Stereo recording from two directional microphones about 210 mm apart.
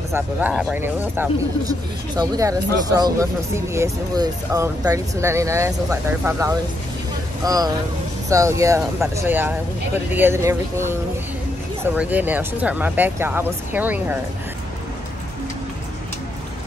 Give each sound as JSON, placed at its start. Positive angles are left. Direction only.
{"t": 0.1, "sound": "speech", "side_deg": -5}